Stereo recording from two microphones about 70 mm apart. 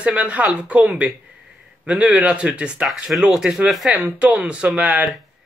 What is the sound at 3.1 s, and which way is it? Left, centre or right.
Speech, centre.